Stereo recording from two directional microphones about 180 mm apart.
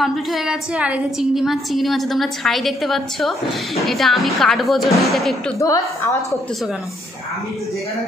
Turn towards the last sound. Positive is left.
turn(degrees=0)  # may be behind; listen again after turning